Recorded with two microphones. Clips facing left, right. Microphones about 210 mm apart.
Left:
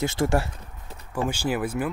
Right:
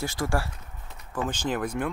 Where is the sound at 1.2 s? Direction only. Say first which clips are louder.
Left 2 dB; 10° left (ahead or behind).